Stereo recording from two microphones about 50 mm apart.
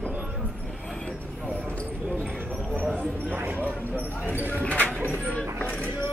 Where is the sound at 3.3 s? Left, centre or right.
Right.